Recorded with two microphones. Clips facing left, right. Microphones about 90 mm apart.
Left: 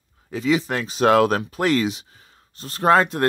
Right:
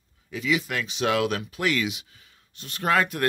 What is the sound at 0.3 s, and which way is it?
Speech, 35° left (ahead or behind).